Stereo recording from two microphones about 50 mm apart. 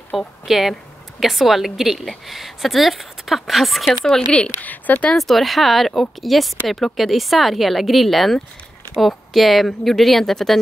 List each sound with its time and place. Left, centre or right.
0.1 s a woman's voice: centre
4.6 s speech: left
5.1 s a woman's voice: centre